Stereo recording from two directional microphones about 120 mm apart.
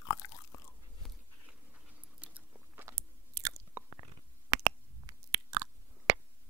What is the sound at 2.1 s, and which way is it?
Biting, 10° right (ahead or behind).